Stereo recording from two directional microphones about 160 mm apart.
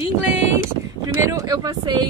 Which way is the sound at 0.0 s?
15° right (ahead or behind).